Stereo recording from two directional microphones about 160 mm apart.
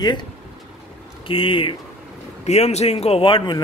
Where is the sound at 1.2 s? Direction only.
35° left (ahead or behind).